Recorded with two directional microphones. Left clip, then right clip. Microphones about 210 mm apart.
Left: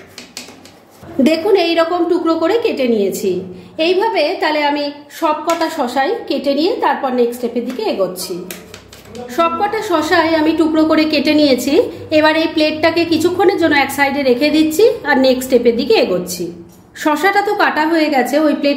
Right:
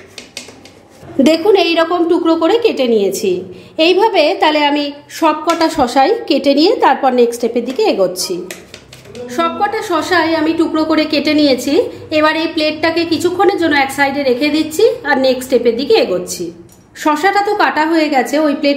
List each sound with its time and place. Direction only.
1.2 s a woman's voice: 25° right (ahead or behind)
9.3 s a woman's voice: 5° right (ahead or behind)